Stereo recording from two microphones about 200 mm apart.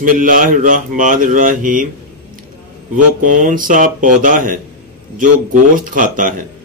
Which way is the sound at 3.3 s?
40° right (ahead or behind).